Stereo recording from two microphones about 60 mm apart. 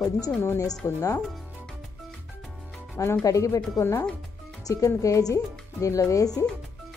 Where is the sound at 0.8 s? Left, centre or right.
Left.